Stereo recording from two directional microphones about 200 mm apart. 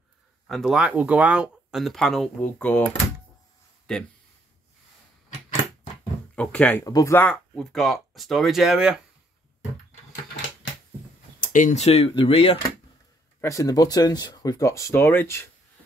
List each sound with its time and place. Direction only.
0.5 s speech: centre (ahead or behind)
6.3 s speech: 5° left (ahead or behind)
6.8 s speech: 15° left (ahead or behind); by 9.0 s centre (ahead or behind)
11.4 s speech: 40° left (ahead or behind)
13.4 s speech: 15° left (ahead or behind)